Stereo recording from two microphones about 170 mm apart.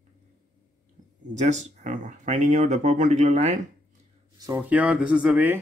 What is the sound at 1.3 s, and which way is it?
Speech, 45° right (ahead or behind).